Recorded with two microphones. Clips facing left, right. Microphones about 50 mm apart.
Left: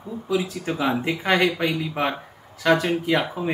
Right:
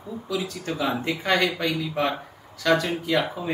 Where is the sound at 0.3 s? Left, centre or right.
Left.